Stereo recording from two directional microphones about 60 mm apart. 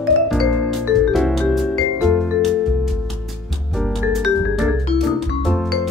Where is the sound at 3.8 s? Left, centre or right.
Centre.